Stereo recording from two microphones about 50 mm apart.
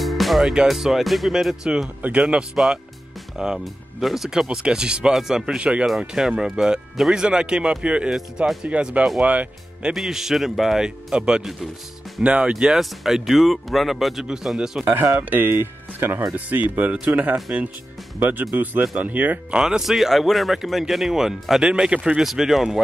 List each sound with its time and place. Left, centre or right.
0.0 s music: centre
0.7 s speech: centre
1.6 s speech: centre
2.0 s speech: right
2.5 s speech: centre
4.5 s speech: centre
5.9 s speech: centre; by 9.9 s right
9.9 s speech: centre
14.9 s speech: right
15.2 s speech: right
16.3 s speech: right
19.6 s speech: centre
22.2 s speech: centre